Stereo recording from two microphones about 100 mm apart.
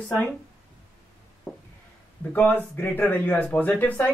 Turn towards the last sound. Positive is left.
turn(degrees=15)  # may be behind; listen again after turning